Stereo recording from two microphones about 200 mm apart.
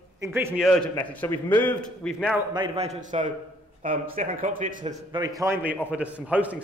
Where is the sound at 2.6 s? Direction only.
30° right (ahead or behind).